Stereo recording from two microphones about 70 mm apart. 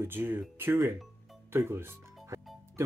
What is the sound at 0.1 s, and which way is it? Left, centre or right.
Speech, right.